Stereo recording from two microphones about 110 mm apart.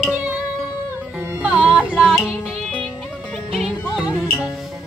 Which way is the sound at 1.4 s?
10° right (ahead or behind).